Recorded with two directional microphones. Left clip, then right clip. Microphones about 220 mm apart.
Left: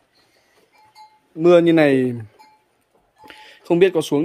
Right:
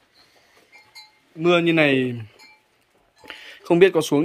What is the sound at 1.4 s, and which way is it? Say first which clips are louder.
Speech: left 5 dB; 25° left (ahead or behind).